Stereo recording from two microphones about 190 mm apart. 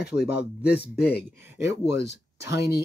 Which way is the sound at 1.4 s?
15° right (ahead or behind).